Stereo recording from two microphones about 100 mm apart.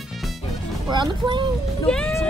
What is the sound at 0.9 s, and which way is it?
Speech, 50° right (ahead or behind).